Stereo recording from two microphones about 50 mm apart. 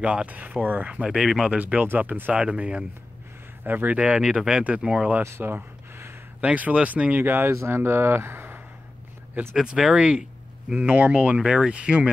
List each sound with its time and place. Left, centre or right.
0.0 s speech: right
1.0 s speech: centre
1.6 s speech: right
2.3 s speech: right
3.6 s speech: right
3.9 s speech: right
4.2 s speech: centre
6.4 s speech: right
7.2 s speech: right
9.6 s speech: centre
9.9 s speech: right
10.9 s speech: right
11.3 s speech: centre